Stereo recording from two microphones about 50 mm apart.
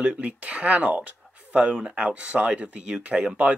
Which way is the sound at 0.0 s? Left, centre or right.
Right.